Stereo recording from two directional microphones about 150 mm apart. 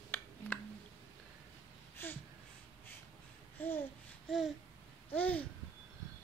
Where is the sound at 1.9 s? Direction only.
15° left (ahead or behind).